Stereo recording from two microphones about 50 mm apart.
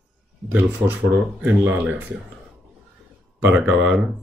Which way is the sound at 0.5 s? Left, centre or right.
Right.